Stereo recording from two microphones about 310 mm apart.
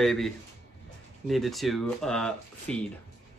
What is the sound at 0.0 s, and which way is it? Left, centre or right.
Speech, centre.